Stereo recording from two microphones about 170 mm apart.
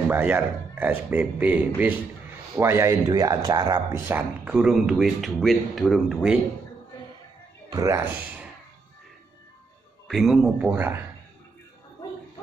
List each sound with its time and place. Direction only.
0.1 s speech: 10° right (ahead or behind)
4.0 s speech: 10° right (ahead or behind)
7.7 s speech: 20° right (ahead or behind)
10.0 s speech: centre (ahead or behind)